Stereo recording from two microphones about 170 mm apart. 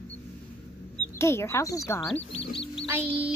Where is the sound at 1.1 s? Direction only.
15° left (ahead or behind).